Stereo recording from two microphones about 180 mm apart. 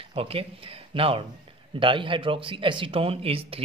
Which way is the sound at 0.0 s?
30° right (ahead or behind).